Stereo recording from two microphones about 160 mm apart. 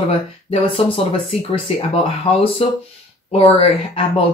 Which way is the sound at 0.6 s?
35° left (ahead or behind).